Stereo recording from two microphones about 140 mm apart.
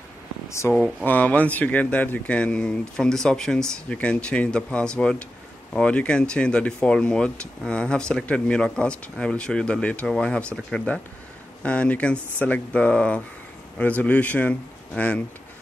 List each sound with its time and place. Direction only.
0.5 s speech: 20° left (ahead or behind)
0.7 s speech: 10° left (ahead or behind)